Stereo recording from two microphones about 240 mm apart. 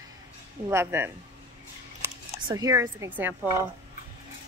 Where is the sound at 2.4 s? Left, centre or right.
Centre.